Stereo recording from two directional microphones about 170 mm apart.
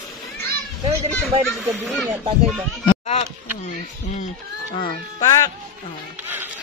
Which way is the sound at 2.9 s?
35° left (ahead or behind).